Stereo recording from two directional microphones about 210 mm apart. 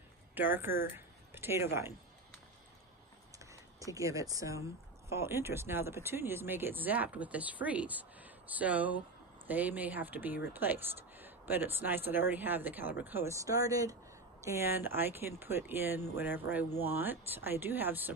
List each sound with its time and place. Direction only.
0.3 s speech: 10° right (ahead or behind)
3.3 s a sound: 15° right (ahead or behind)
5.1 s speech: 10° right (ahead or behind)